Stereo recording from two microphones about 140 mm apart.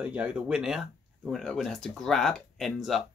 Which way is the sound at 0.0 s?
10° right (ahead or behind).